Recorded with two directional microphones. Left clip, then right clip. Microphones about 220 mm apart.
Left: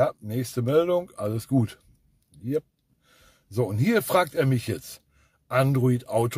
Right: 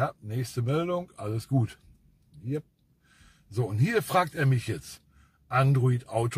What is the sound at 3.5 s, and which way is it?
Speech, 50° left (ahead or behind).